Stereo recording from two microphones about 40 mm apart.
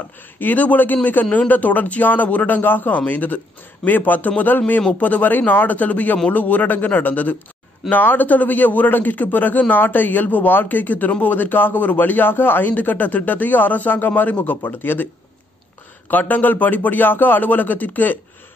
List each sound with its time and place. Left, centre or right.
0.4 s a man's voice: left
3.1 s a man's voice: left
12.6 s a man's voice: left
16.1 s a man's voice: left